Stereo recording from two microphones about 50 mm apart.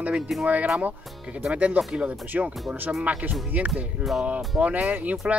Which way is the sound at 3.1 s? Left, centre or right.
Right.